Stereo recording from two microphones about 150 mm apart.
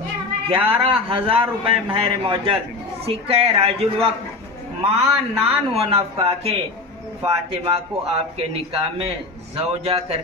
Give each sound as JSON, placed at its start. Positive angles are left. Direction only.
{"t": 0.8, "sound": "a man's voice", "side_deg": -40}